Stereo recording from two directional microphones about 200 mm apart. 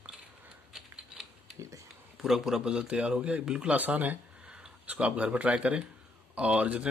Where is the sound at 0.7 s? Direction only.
Centre (ahead or behind).